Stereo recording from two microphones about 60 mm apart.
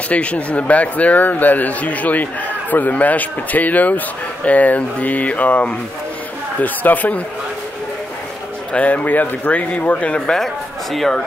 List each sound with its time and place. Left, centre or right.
0.1 s speech: left
8.7 s speech: left; by 11.2 s centre